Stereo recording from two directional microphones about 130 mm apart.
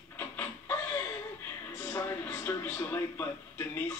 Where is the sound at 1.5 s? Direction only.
20° left (ahead or behind).